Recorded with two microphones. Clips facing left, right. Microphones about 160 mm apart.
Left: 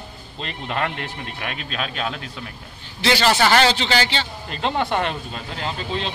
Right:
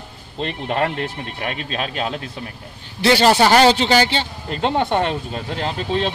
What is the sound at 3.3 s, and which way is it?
Speech, 35° right (ahead or behind).